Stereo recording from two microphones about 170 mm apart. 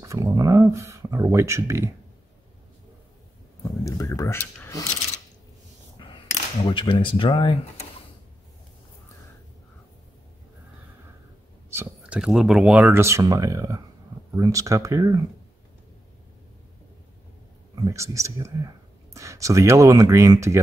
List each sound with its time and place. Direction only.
0.0 s speech: 20° right (ahead or behind)
3.8 s speech: 20° left (ahead or behind)
6.0 s a sound: 25° left (ahead or behind)
6.6 s speech: 30° left (ahead or behind)
11.7 s a sound: 15° right (ahead or behind)
12.2 s speech: 5° right (ahead or behind); by 15.1 s 20° right (ahead or behind)
17.8 s speech: 15° right (ahead or behind)